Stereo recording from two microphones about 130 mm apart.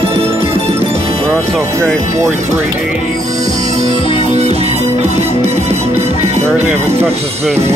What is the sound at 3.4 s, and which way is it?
Music, 60° right (ahead or behind).